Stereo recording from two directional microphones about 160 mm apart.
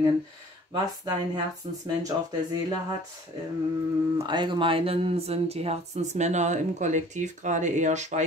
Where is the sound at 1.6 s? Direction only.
45° right (ahead or behind).